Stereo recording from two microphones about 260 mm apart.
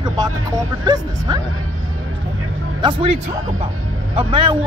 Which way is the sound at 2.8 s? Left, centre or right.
Centre.